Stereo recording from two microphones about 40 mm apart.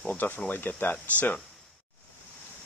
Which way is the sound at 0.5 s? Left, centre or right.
Left.